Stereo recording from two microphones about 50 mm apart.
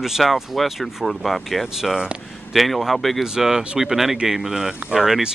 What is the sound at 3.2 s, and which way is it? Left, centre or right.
Speech, centre.